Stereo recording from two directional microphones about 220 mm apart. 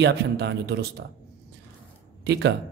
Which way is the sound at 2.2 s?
50° right (ahead or behind).